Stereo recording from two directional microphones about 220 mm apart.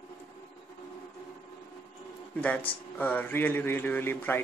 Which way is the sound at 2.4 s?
5° left (ahead or behind).